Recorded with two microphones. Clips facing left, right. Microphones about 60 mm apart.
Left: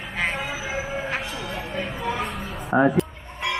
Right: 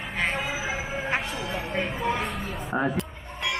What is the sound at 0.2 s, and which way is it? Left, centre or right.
Train, centre.